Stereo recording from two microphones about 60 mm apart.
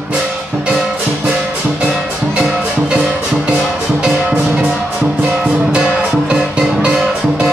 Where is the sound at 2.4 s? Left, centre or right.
Centre.